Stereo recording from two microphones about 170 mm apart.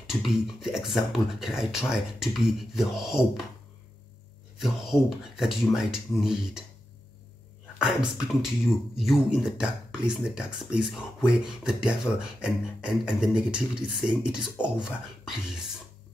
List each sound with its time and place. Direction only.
0.0 s speech: centre (ahead or behind)
4.9 s speech: centre (ahead or behind)
7.8 s speech: 5° right (ahead or behind)